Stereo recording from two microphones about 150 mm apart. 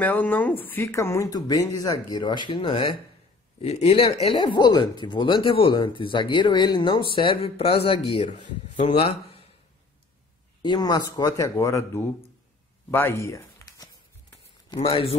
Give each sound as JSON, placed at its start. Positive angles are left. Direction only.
{"t": 0.0, "sound": "speech", "side_deg": 10}
{"t": 10.6, "sound": "speech", "side_deg": 25}
{"t": 14.8, "sound": "speech", "side_deg": 40}